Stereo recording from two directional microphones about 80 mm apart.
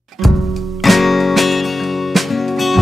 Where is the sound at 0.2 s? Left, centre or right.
Centre.